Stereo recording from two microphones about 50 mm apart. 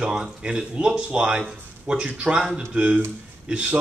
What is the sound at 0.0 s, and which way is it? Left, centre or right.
Speech, centre.